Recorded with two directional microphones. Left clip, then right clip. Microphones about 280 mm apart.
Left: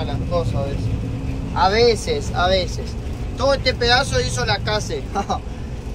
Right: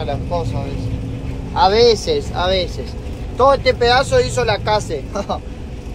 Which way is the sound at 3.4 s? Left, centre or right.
Centre.